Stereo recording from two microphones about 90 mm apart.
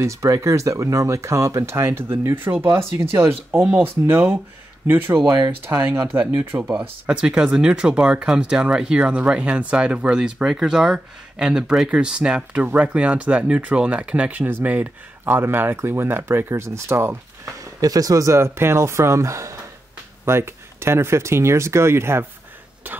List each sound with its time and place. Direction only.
0.0 s speech: 35° right (ahead or behind)
5.7 s speech: 35° right (ahead or behind)
6.1 s speech: 25° right (ahead or behind)
7.1 s speech: 10° right (ahead or behind); by 17.2 s 30° right (ahead or behind)
17.7 s speech: 45° right (ahead or behind); by 23.0 s 20° right (ahead or behind)